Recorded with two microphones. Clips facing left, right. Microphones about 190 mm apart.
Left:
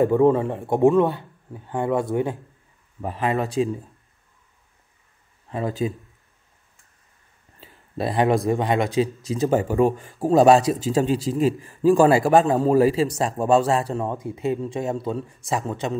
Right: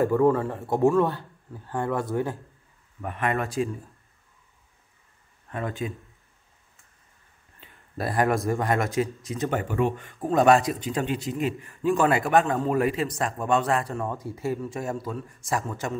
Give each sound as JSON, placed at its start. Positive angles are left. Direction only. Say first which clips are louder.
{"t": 0.0, "sound": "a man's voice", "louder": "left 4 dB", "side_deg": 20}
{"t": 3.0, "sound": "a man's voice", "louder": "left 3 dB", "side_deg": 30}
{"t": 5.5, "sound": "speech", "louder": "left 6 dB", "side_deg": 30}
{"t": 7.6, "sound": "a sound", "louder": "left 4 dB", "side_deg": 25}
{"t": 8.5, "sound": "a man's voice", "louder": "left 4 dB", "side_deg": 25}